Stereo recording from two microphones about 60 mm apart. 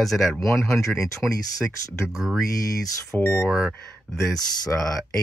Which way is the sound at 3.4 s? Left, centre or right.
Centre.